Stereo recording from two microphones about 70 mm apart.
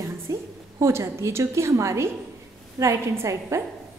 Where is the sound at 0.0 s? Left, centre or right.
Right.